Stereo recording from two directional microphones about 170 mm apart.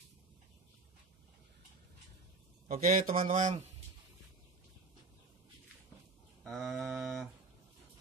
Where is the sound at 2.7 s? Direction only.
55° right (ahead or behind).